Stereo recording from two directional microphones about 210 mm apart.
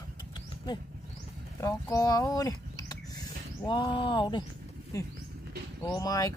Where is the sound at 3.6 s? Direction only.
20° left (ahead or behind).